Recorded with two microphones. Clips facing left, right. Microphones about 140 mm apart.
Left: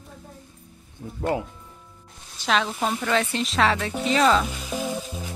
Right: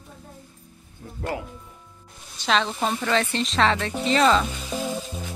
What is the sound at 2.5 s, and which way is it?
Music, 5° left (ahead or behind).